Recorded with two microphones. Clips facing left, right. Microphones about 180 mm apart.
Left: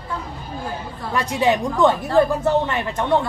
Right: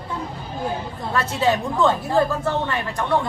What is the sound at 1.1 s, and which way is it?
A woman's voice, 15° left (ahead or behind).